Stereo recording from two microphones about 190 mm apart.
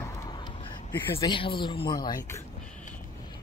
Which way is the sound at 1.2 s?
25° left (ahead or behind).